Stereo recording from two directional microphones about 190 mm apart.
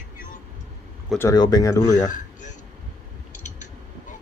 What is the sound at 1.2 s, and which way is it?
Speech, 20° left (ahead or behind).